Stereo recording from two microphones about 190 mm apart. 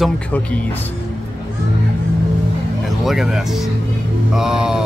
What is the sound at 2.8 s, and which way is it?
Speech, centre (ahead or behind).